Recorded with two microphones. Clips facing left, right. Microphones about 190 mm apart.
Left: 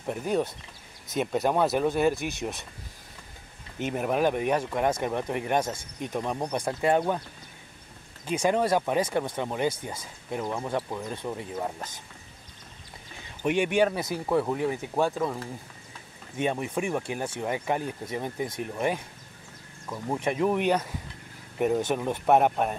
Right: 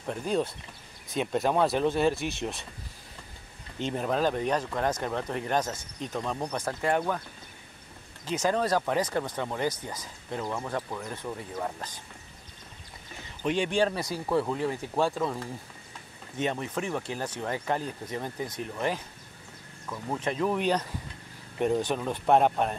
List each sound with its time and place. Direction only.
0.0 s speech: 15° left (ahead or behind)
1.1 s speech: 5° left (ahead or behind)
3.8 s speech: 15° left (ahead or behind)
8.3 s speech: 15° left (ahead or behind)
13.4 s speech: 10° left (ahead or behind)
14.0 s speech: 20° left (ahead or behind)
16.3 s speech: 10° left (ahead or behind)